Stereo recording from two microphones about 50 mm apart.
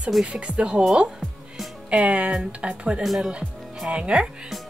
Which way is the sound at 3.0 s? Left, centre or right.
Centre.